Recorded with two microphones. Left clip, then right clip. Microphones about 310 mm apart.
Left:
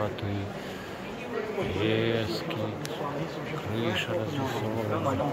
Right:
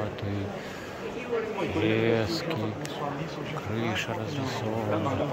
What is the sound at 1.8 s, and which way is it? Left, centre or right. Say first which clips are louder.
Speech: right 3 dB; centre.